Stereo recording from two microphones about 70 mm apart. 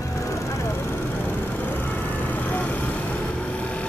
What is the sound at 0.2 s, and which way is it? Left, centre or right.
Vehicle, left.